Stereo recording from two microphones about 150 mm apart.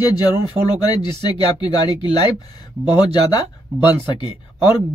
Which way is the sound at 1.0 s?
30° left (ahead or behind).